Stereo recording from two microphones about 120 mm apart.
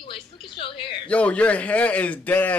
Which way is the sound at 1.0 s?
10° left (ahead or behind).